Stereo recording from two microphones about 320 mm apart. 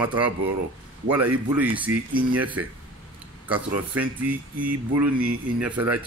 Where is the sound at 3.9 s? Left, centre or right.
Centre.